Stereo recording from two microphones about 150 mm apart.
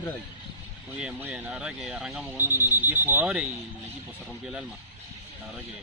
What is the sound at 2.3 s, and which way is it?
Speech, 15° right (ahead or behind).